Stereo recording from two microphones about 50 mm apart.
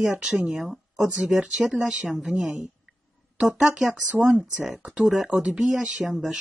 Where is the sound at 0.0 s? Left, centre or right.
Centre.